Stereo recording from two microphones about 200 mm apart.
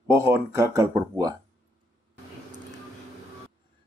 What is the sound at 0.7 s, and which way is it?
Speech, 15° right (ahead or behind).